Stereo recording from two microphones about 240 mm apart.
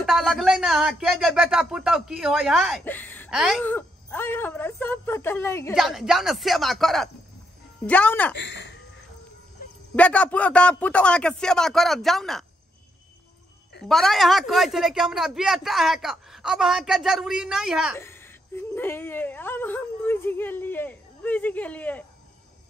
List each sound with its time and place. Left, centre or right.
0.0 s a woman's voice: centre
5.8 s a woman's voice: centre
8.4 s speech: left
9.9 s a woman's voice: centre
13.8 s a woman's voice: centre
17.9 s speech: centre